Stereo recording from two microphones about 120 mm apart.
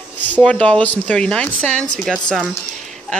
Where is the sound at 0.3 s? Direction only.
10° left (ahead or behind).